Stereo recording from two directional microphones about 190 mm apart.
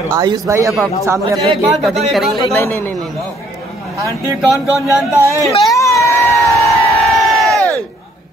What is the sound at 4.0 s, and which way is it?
Speech, 15° right (ahead or behind).